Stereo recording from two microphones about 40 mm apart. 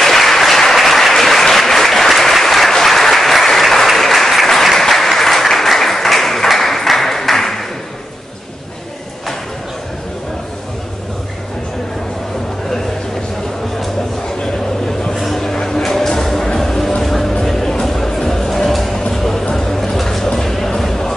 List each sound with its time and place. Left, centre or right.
0.0 s applause: centre
14.4 s a sound: centre
16.5 s music: centre